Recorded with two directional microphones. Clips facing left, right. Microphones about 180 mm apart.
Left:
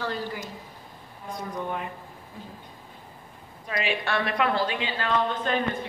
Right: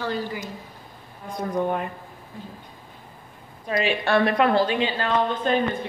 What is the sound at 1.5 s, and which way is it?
Speech, 50° right (ahead or behind).